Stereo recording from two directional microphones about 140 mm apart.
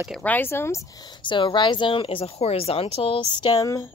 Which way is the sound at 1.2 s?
35° left (ahead or behind).